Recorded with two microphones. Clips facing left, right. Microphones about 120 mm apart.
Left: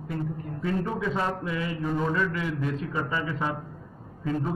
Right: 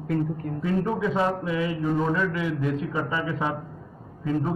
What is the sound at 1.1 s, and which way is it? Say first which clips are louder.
A man's voice: right 4 dB; 15° right (ahead or behind).